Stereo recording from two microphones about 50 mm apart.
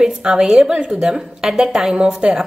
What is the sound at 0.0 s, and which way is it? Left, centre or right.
A woman's voice, centre.